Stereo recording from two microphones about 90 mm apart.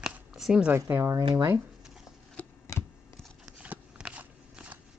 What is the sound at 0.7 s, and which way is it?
Speech, 25° right (ahead or behind).